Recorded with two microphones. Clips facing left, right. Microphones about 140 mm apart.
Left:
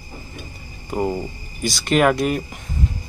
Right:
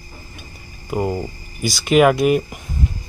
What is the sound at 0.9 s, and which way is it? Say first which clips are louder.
Speech: right 1 dB; centre (ahead or behind).